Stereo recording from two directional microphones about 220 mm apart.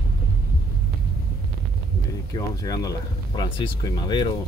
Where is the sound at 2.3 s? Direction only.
15° left (ahead or behind).